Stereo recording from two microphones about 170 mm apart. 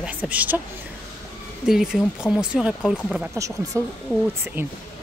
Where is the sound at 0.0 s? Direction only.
10° right (ahead or behind).